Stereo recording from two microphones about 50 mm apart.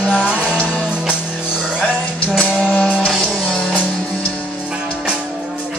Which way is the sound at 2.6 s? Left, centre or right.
Left.